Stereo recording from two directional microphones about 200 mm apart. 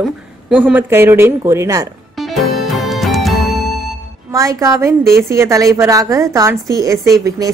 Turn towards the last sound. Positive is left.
turn(degrees=-15)  # may be behind; listen again after turning